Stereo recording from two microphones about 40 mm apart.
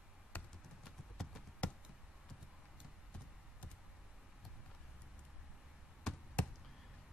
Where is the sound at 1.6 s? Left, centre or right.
Left.